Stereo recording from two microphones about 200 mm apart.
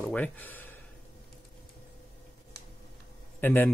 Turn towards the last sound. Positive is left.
turn(degrees=10)  # may be behind; listen again after turning